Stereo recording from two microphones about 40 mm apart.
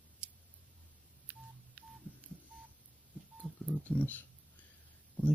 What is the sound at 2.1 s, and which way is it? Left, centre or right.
Telephone dialing, left.